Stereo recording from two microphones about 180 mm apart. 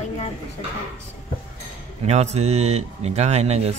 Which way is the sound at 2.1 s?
40° right (ahead or behind).